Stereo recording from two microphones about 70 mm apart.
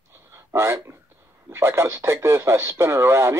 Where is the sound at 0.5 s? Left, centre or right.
Right.